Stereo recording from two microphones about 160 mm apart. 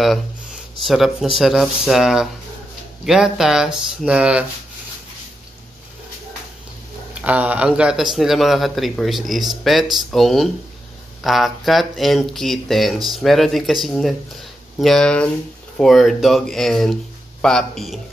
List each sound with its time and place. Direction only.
0.0 s speech: centre (ahead or behind)
7.2 s speech: 10° right (ahead or behind)